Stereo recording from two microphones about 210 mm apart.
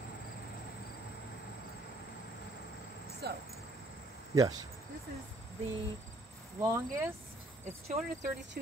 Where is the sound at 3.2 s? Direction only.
50° right (ahead or behind).